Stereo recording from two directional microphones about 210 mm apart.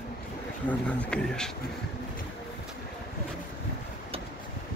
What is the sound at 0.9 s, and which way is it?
Speech, 5° left (ahead or behind).